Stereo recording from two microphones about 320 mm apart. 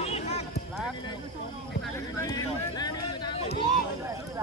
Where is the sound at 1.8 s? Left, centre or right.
Centre.